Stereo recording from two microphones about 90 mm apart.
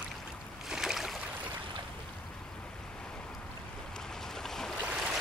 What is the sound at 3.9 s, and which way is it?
Boat, 5° left (ahead or behind).